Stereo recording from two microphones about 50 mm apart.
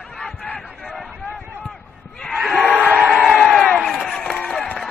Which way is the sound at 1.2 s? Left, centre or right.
Centre.